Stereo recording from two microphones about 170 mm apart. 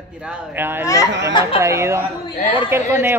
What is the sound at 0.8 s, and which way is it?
Speech, 20° left (ahead or behind).